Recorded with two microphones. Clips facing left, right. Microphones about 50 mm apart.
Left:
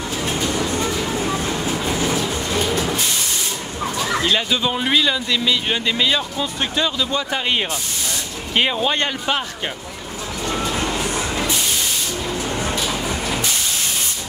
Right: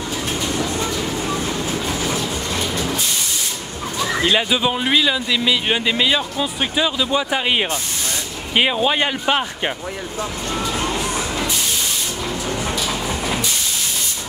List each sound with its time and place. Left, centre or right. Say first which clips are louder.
0.3 s train: left 1 dB; centre
0.7 s vehicle: left 1 dB; centre
2.6 s train: left 3 dB; centre
4.2 s speech: right 4 dB; centre
10.7 s music: even; centre